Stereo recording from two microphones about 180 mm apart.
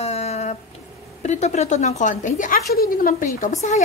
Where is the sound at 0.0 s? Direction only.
35° left (ahead or behind).